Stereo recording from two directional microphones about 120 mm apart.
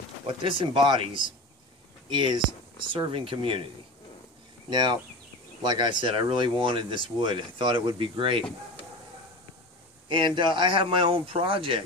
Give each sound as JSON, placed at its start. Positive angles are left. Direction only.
{"t": 0.3, "sound": "speech", "side_deg": -45}
{"t": 4.6, "sound": "speech", "side_deg": -40}
{"t": 8.4, "sound": "speech", "side_deg": 5}
{"t": 10.0, "sound": "speech", "side_deg": -45}